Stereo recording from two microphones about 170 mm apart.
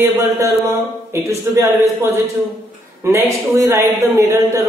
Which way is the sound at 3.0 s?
15° right (ahead or behind).